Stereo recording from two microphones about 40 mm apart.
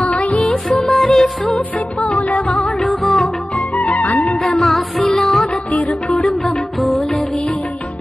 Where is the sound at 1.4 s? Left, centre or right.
Left.